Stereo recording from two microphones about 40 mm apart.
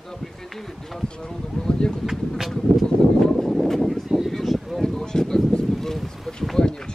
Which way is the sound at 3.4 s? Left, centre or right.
Centre.